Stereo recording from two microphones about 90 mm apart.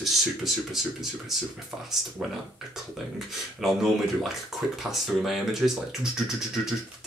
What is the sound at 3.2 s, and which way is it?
Speech, centre (ahead or behind).